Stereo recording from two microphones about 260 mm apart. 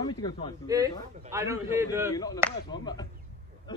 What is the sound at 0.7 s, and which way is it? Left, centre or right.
A man's voice, centre.